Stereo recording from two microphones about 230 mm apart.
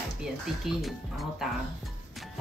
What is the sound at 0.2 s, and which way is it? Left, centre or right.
Speech, centre.